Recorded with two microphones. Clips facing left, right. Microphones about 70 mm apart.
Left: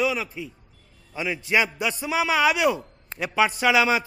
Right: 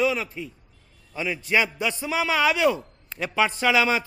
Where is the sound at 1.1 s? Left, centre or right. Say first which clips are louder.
Even; centre.